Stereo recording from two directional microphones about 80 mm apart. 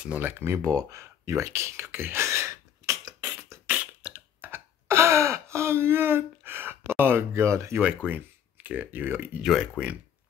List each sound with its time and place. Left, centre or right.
0.2 s speech: right
0.6 s speech: right
3.6 s beatboxing: centre
4.5 s throat clearing: right
7.8 s speech: right
9.4 s speech: centre